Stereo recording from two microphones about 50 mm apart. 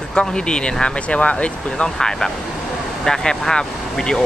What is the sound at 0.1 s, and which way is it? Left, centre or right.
Speech, centre.